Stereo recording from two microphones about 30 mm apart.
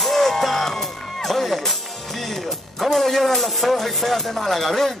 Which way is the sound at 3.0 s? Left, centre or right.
Centre.